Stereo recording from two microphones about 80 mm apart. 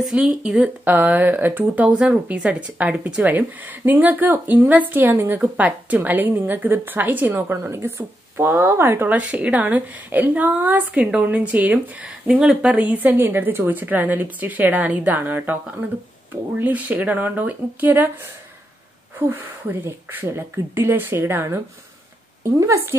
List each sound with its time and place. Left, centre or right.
0.0 s speech: centre
16.5 s a woman's voice: right